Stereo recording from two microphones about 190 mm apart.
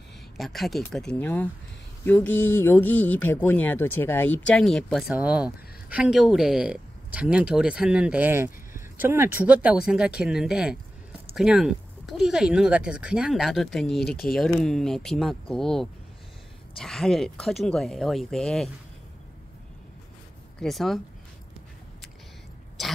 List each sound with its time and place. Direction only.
0.4 s speech: centre (ahead or behind)
14.0 s speech: 50° left (ahead or behind)
14.3 s speech: centre (ahead or behind)
20.5 s speech: centre (ahead or behind)
22.8 s throat clearing: centre (ahead or behind)